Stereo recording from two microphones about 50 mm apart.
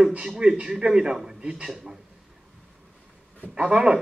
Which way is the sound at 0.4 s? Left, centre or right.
Centre.